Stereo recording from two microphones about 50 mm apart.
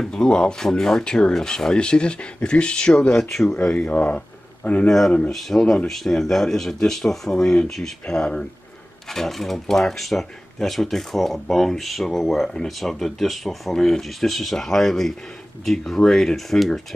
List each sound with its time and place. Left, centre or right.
0.1 s speech: centre
3.2 s speech: centre; by 4.2 s left
4.8 s speech: centre